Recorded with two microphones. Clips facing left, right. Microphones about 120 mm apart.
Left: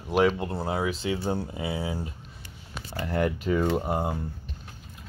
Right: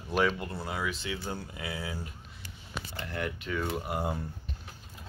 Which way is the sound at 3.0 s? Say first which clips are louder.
Left 10 dB; 40° left (ahead or behind).